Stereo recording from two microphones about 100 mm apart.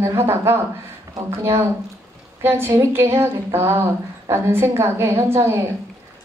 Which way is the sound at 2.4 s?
25° right (ahead or behind).